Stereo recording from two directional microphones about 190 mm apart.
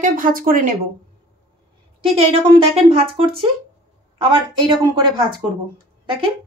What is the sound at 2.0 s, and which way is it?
Speech, 30° right (ahead or behind).